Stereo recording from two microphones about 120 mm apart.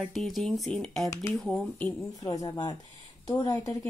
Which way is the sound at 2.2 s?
40° left (ahead or behind).